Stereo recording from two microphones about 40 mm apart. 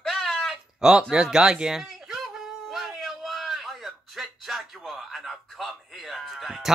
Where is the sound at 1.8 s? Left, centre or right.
Centre.